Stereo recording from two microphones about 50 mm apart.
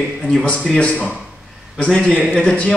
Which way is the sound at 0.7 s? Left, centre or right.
Left.